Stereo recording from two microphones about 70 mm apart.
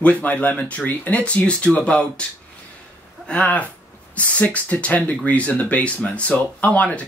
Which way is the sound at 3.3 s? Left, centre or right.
Centre.